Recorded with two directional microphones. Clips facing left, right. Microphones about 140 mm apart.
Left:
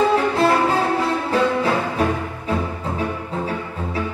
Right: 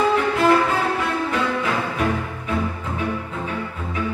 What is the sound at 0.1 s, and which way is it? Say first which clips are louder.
Music: even; 35° left (ahead or behind).